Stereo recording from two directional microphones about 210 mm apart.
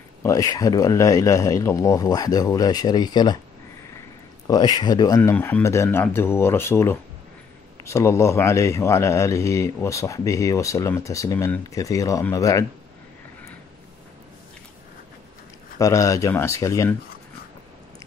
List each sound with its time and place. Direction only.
0.2 s speech: 15° left (ahead or behind)
4.5 s speech: 20° left (ahead or behind)
15.8 s speech: 15° left (ahead or behind)